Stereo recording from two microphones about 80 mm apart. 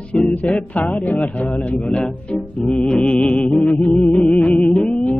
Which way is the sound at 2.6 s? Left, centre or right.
Centre.